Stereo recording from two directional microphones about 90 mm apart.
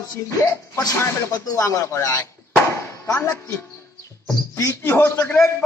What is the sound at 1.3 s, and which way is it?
Speech, 35° left (ahead or behind).